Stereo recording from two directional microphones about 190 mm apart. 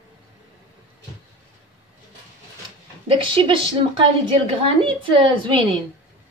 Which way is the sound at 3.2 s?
25° right (ahead or behind).